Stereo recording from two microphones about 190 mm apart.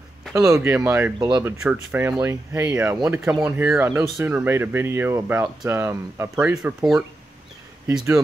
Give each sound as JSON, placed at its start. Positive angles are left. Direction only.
{"t": 0.3, "sound": "speech", "side_deg": -15}
{"t": 6.5, "sound": "speech", "side_deg": -5}